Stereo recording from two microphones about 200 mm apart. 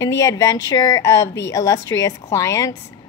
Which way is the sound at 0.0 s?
15° left (ahead or behind).